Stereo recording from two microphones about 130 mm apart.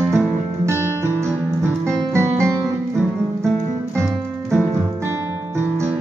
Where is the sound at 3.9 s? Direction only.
20° right (ahead or behind).